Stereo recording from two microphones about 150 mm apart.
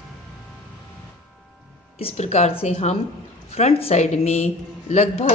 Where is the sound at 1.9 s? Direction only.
45° left (ahead or behind).